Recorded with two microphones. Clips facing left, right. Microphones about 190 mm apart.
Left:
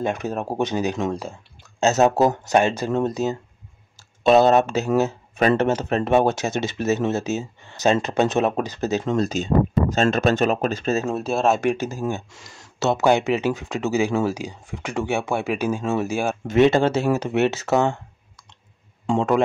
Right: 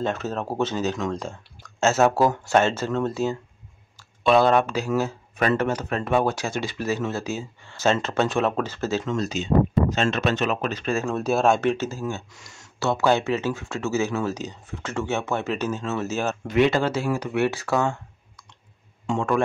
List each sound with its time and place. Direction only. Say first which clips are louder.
0.0 s speech: left 2 dB; 15° left (ahead or behind)
4.4 s speech: left 2 dB; 25° left (ahead or behind)
9.1 s speech: left 1 dB; 45° left (ahead or behind)
11.1 s speech: even; centre (ahead or behind)
11.6 s speech: left 1 dB; 15° left (ahead or behind)
12.3 s speech: left 3 dB; 30° left (ahead or behind); by 16.3 s 10° left (ahead or behind)
16.4 s speech: left 4 dB; 25° left (ahead or behind)